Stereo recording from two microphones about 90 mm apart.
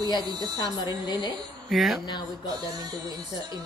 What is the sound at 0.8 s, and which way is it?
Speech, 50° left (ahead or behind).